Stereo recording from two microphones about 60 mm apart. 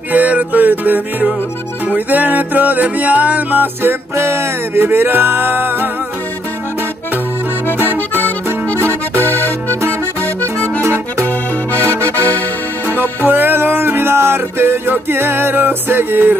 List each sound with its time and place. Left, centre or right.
0.1 s music: right
7.8 s music: right
8.7 s accordion: right
9.2 s music: left
10.8 s accordion: right
11.2 s music: left
13.2 s music: right